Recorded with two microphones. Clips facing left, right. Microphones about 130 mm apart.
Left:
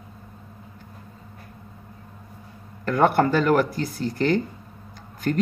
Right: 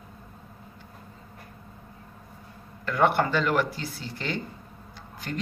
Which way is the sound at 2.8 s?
40° left (ahead or behind).